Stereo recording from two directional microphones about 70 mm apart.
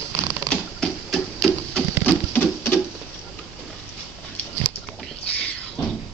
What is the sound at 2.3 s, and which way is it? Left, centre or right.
Patter, left.